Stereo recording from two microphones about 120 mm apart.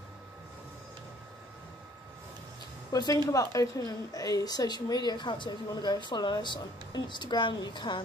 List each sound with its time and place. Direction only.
2.9 s a woman's voice: 30° left (ahead or behind)